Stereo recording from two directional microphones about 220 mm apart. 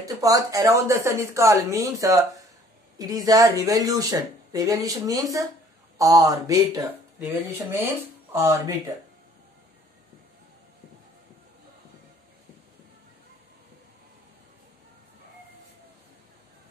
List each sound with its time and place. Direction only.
0.0 s speech: 15° right (ahead or behind)